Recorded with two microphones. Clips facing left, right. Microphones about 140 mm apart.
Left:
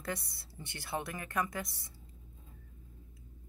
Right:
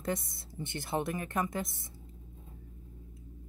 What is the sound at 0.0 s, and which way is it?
A woman's voice, 20° right (ahead or behind).